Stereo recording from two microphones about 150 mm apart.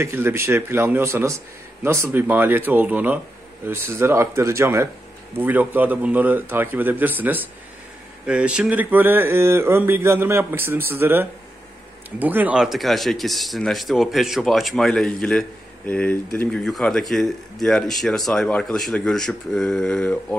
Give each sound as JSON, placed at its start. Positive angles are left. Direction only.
{"t": 0.0, "sound": "speech", "side_deg": -15}